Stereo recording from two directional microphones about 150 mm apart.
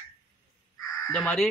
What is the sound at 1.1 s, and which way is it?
Speech, 5° left (ahead or behind).